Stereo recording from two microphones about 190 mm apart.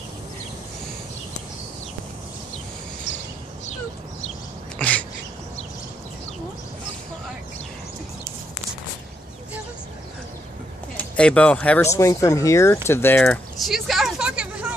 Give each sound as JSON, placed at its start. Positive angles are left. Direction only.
{"t": 3.1, "sound": "a sound", "side_deg": 70}
{"t": 4.7, "sound": "bird", "side_deg": 5}
{"t": 11.0, "sound": "speech", "side_deg": 5}